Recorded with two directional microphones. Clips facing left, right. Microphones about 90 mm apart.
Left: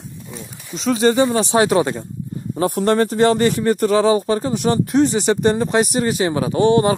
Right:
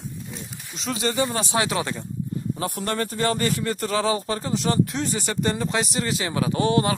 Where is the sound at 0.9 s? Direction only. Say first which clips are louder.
Left 11 dB; 40° left (ahead or behind).